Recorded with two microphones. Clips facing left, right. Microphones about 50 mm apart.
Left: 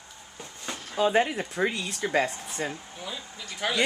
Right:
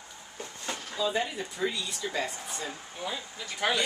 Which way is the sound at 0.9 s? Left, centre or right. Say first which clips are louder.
Left 7 dB; left.